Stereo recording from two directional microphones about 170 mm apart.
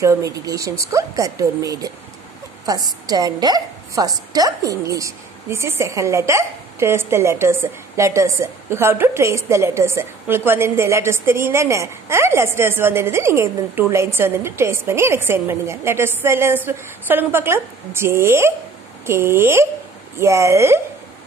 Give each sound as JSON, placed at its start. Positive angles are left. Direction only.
{"t": 0.0, "sound": "speech", "side_deg": -20}
{"t": 3.1, "sound": "a woman's voice", "side_deg": -25}